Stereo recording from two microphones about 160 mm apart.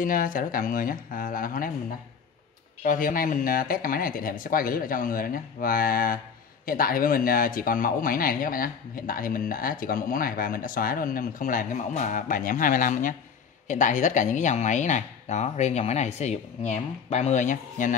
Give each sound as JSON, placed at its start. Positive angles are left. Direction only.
{"t": 0.0, "sound": "speech", "side_deg": 60}
{"t": 2.8, "sound": "speech", "side_deg": 55}